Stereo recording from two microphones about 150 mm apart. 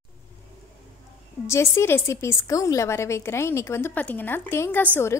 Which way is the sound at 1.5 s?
15° left (ahead or behind).